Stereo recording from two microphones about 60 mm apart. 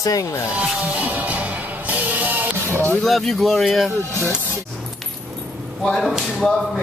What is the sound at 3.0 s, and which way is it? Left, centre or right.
Speech, centre.